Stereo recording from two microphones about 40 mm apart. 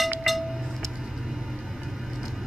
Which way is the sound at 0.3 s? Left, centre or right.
Centre.